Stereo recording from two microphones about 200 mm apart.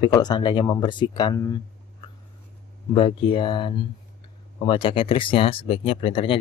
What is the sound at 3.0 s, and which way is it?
Speech, 25° left (ahead or behind).